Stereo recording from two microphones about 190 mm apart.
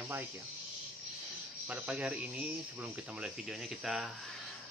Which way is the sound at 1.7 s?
5° right (ahead or behind).